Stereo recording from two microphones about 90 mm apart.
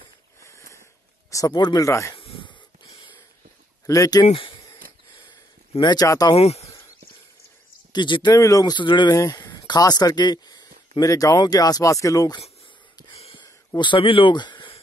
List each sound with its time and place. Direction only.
0.4 s a sound: 35° left (ahead or behind)
1.5 s speech: 50° left (ahead or behind)
2.1 s wheeze: 80° left
3.8 s speech: 40° left (ahead or behind)
4.3 s speech: 80° left
5.8 s speech: 50° left (ahead or behind)
7.9 s speech: 60° left (ahead or behind)
8.4 s speech: 40° left (ahead or behind)
8.7 s speech: 60° left (ahead or behind)
9.1 s speech: 35° left (ahead or behind)
9.4 s speech: 55° left (ahead or behind)
13.7 s speech: 65° left (ahead or behind)